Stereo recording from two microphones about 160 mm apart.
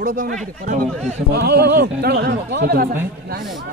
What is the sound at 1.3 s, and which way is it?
Speech, 80° right.